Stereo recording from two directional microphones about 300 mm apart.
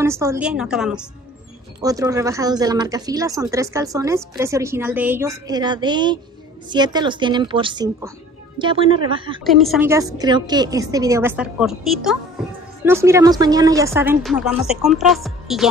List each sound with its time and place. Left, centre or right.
0.0 s speech: centre
9.4 s speech: centre